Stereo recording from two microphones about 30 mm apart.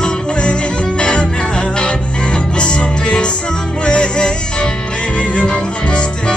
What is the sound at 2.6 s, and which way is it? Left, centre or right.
Music, left.